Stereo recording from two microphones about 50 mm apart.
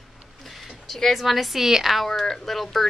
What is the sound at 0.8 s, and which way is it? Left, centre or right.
Speech, centre.